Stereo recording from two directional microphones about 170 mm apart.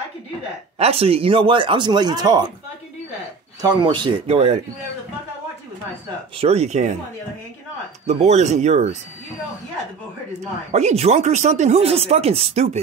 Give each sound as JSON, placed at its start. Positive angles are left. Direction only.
{"t": 0.7, "sound": "speech", "side_deg": -35}
{"t": 3.6, "sound": "speech", "side_deg": -25}
{"t": 6.3, "sound": "speech", "side_deg": -35}
{"t": 8.1, "sound": "speech", "side_deg": -40}
{"t": 10.7, "sound": "speech", "side_deg": -40}